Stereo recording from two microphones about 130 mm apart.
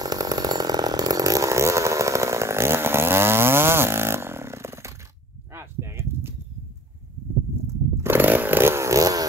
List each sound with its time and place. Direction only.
0.0 s chainsaw: 30° right (ahead or behind)
5.5 s a sound: 20° right (ahead or behind)
7.6 s chainsaw: 20° right (ahead or behind)